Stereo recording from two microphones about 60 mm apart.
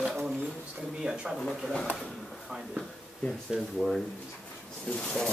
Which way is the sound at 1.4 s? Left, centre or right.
Centre.